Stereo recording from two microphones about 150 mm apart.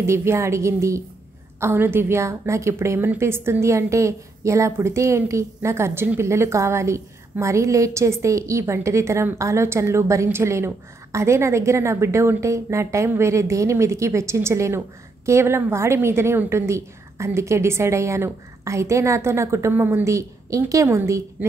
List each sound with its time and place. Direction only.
0.0 s a woman's voice: 15° right (ahead or behind)